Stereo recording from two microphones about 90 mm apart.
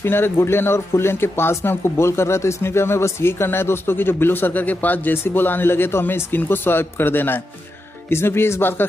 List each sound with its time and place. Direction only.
0.0 s speech: 25° left (ahead or behind)